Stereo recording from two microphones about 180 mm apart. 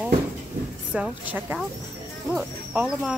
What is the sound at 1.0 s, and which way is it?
A woman's voice, 10° right (ahead or behind).